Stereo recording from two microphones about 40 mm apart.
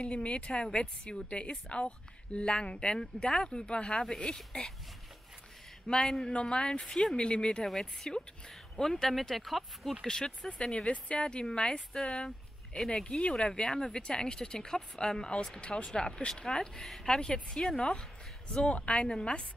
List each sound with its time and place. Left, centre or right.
0.0 s a woman's voice: left
5.9 s a woman's voice: centre
7.6 s a woman's voice: centre
10.0 s a woman's voice: centre
11.9 s a woman's voice: centre